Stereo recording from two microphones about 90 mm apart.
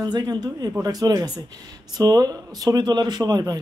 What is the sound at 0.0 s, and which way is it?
Speech, 50° right (ahead or behind).